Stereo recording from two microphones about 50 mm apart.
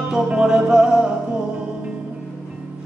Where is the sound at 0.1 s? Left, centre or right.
Centre.